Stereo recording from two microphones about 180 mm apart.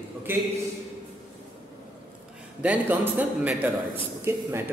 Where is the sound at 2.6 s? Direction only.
10° right (ahead or behind).